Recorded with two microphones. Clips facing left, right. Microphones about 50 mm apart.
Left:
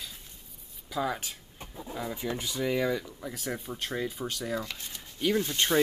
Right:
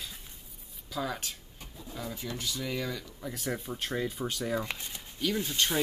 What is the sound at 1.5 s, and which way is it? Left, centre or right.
Speech, left.